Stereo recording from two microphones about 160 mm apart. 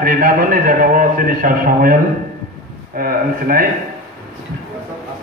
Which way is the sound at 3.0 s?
65° right (ahead or behind).